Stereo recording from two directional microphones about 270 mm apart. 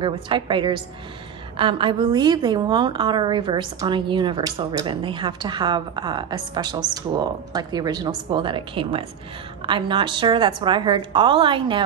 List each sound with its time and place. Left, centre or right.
0.0 s a woman's voice: centre